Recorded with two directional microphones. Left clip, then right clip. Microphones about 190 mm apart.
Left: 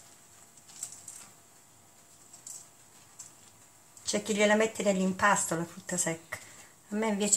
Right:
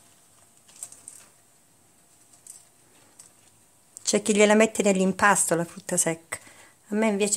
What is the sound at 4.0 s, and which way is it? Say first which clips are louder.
Speech: right 7 dB; 90° right.